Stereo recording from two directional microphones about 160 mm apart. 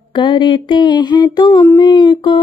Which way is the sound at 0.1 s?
30° left (ahead or behind).